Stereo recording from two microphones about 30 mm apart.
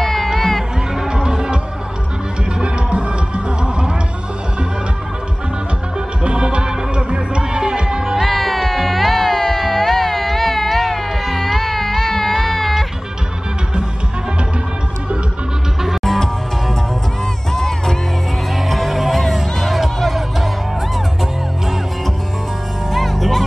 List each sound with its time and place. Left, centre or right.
0.0 s music: centre
1.2 s music: right
2.6 s music: right
6.2 s music: right
8.2 s music: centre
16.0 s music: centre
17.5 s music: centre
18.7 s music: centre
22.8 s music: centre